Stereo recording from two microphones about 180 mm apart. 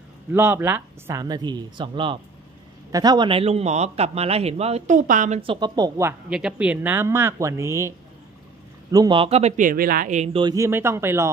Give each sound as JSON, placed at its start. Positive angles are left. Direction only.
{"t": 0.3, "sound": "a man's voice", "side_deg": -10}
{"t": 5.4, "sound": "speech", "side_deg": -25}
{"t": 6.3, "sound": "speech", "side_deg": -5}
{"t": 8.9, "sound": "a man's voice", "side_deg": -25}
{"t": 10.4, "sound": "speech", "side_deg": -15}